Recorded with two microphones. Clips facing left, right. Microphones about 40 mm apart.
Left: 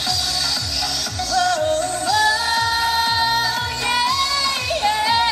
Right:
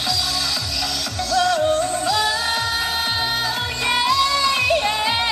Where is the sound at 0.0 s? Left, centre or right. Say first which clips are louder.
Even; centre.